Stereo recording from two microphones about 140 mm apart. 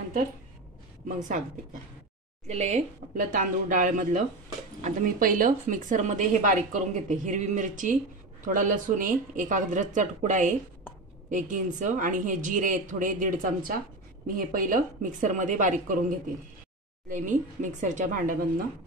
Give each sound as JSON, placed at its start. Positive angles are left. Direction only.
{"t": 2.4, "sound": "a woman's voice", "side_deg": -55}
{"t": 4.8, "sound": "a woman's voice", "side_deg": -80}
{"t": 17.1, "sound": "speech", "side_deg": -70}